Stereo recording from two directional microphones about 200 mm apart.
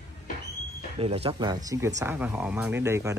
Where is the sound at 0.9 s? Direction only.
30° right (ahead or behind).